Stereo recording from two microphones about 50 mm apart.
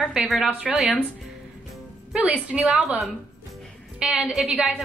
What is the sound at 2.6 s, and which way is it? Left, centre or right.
Speech, centre.